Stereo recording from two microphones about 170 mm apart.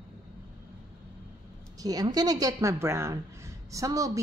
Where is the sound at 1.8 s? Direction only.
20° right (ahead or behind).